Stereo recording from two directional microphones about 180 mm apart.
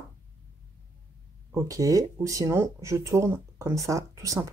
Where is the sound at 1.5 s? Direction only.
20° right (ahead or behind).